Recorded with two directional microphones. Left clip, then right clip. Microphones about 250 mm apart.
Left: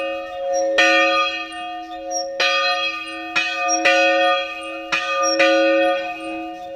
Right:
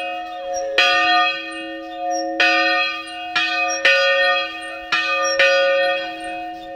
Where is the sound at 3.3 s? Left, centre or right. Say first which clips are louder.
Even; right.